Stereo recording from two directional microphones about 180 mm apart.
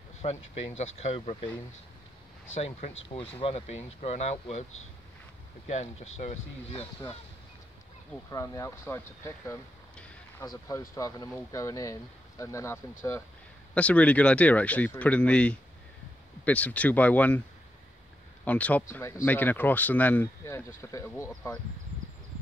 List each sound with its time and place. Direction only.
0.2 s speech: 35° left (ahead or behind)
2.5 s speech: 35° left (ahead or behind)
5.7 s speech: 35° left (ahead or behind)
8.3 s speech: 20° left (ahead or behind)
18.4 s speech: 10° left (ahead or behind)